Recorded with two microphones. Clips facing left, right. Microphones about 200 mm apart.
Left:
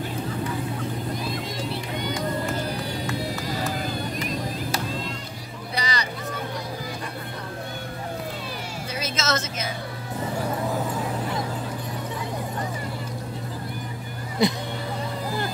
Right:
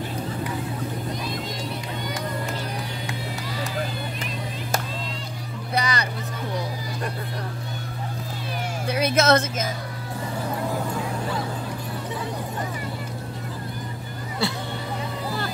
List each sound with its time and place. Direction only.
5.8 s vehicle: 55° right (ahead or behind)
8.8 s a sound: 60° right (ahead or behind)
14.4 s music: 20° left (ahead or behind)